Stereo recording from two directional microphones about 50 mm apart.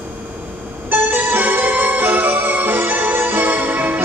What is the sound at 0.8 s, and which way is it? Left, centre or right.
Music, right.